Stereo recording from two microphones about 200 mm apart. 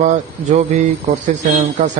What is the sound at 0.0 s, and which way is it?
Speech, 40° right (ahead or behind).